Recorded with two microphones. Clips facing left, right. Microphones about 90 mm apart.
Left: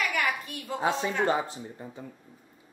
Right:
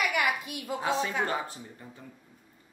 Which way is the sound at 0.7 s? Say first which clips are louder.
Left 2 dB; 20° left (ahead or behind).